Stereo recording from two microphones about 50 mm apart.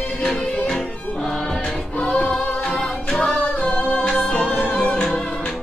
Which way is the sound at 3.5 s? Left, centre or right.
Left.